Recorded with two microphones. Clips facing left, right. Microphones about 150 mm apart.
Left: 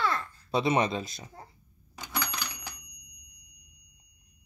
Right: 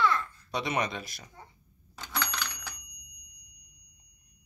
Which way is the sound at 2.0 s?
15° left (ahead or behind).